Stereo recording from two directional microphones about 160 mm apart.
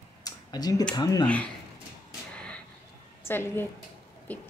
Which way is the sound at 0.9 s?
25° left (ahead or behind).